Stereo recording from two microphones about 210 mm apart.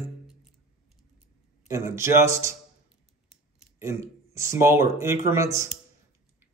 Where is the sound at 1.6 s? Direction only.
10° right (ahead or behind).